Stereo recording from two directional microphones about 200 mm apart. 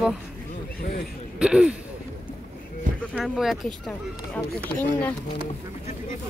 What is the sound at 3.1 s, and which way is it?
Speech, centre (ahead or behind).